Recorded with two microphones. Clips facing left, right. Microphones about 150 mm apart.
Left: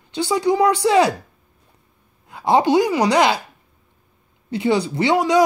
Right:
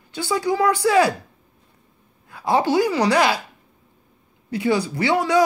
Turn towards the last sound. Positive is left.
turn(degrees=20)  # may be behind; listen again after turning